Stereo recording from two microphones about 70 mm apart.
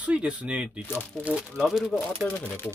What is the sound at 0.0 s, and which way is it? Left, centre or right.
Speech, centre.